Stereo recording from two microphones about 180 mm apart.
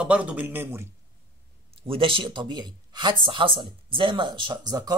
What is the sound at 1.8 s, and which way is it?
Speech, 30° right (ahead or behind).